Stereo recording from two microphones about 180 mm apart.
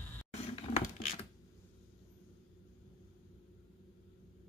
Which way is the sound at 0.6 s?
35° left (ahead or behind).